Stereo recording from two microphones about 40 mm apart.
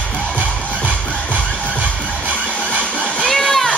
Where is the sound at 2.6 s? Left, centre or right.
Right.